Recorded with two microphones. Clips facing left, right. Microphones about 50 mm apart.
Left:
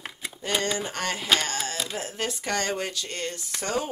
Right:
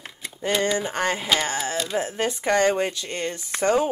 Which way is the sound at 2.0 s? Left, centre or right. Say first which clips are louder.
Right 6 dB; right.